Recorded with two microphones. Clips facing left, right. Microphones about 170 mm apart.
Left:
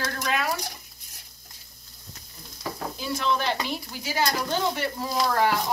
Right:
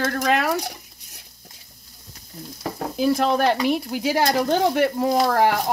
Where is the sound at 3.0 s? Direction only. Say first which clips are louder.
Right 9 dB; 55° right (ahead or behind).